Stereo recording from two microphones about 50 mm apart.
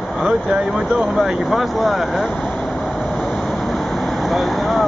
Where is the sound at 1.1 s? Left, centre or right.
Centre.